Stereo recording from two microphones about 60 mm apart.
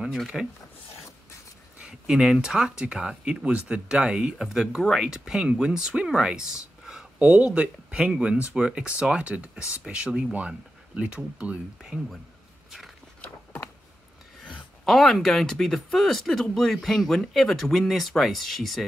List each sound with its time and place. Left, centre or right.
0.3 s speech: centre
1.8 s a sound: centre
2.4 s speech: centre
7.2 s speech: right
13.2 s a sound: left
14.9 s speech: centre